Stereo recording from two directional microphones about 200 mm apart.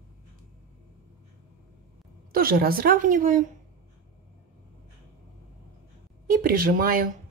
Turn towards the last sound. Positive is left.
turn(degrees=-45)  # may be behind; listen again after turning